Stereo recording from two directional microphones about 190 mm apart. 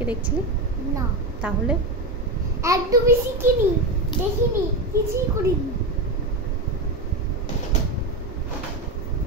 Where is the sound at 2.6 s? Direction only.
15° right (ahead or behind).